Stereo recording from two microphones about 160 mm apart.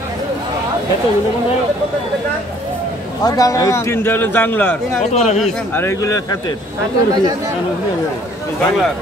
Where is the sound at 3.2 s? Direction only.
20° left (ahead or behind).